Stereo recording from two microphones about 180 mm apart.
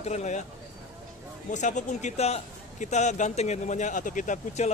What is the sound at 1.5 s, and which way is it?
A man's voice, 40° left (ahead or behind).